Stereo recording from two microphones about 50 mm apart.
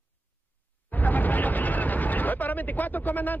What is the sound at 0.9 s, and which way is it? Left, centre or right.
A man's voice, left.